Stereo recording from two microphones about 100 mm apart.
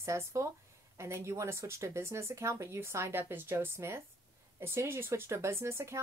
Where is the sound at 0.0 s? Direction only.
30° right (ahead or behind).